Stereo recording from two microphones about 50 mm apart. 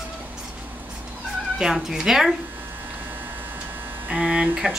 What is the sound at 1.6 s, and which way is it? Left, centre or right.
Speech, centre.